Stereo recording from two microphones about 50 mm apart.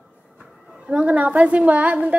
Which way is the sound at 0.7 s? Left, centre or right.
Right.